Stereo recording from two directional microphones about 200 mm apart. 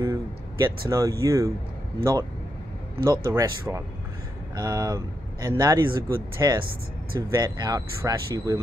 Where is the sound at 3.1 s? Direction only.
15° right (ahead or behind).